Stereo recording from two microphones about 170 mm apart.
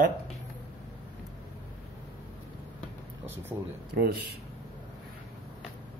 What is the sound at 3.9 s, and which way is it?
Speech, 65° right (ahead or behind).